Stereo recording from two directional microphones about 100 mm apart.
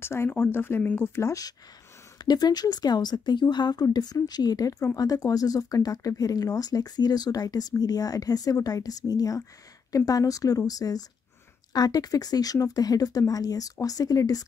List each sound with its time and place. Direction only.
0.0 s speech: 25° left (ahead or behind)
2.1 s speech: 45° left (ahead or behind)